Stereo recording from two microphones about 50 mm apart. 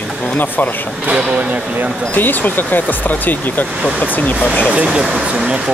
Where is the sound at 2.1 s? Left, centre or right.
Left.